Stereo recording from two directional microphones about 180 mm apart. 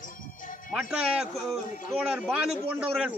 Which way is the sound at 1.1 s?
5° right (ahead or behind).